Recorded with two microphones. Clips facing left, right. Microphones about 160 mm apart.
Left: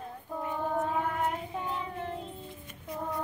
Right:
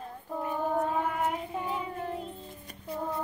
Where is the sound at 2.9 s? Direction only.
35° right (ahead or behind).